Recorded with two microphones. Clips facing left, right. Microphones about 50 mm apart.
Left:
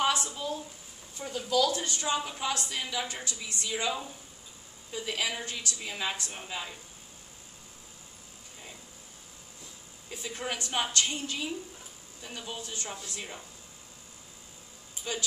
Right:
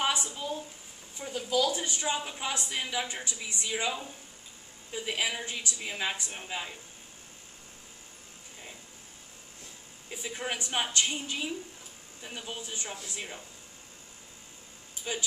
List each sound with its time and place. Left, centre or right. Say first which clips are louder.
0.0 s a woman's voice: left 2 dB; centre
4.9 s a woman's voice: right 1 dB; centre
10.0 s a woman's voice: even; centre
15.1 s a woman's voice: even; centre